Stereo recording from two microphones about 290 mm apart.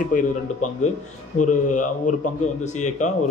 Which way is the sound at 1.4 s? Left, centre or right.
Left.